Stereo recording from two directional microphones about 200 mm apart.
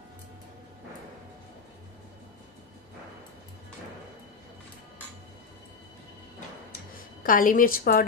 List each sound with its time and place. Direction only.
7.0 s a woman's voice: 45° left (ahead or behind)